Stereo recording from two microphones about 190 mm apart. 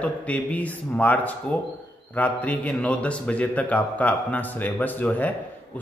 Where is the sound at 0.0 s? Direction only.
10° left (ahead or behind).